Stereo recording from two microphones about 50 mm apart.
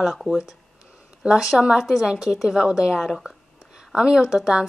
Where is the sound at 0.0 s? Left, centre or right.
Centre.